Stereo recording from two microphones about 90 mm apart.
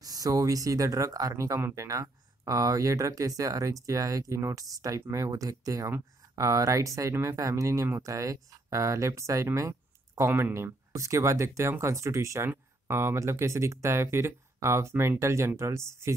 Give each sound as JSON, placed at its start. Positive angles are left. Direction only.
{"t": 0.0, "sound": "speech", "side_deg": -45}